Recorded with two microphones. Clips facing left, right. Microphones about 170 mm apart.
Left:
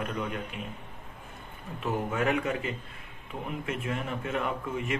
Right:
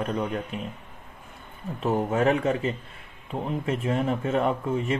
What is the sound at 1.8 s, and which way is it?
Speech, 30° right (ahead or behind).